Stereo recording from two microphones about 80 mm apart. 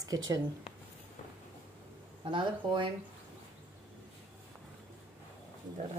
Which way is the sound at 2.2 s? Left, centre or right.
Right.